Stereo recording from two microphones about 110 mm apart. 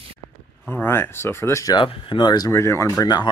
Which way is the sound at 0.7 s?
20° left (ahead or behind).